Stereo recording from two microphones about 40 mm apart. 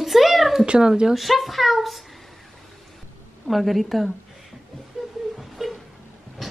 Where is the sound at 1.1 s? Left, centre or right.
Centre.